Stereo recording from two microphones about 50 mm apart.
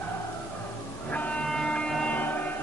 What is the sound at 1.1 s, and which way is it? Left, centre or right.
Music, left.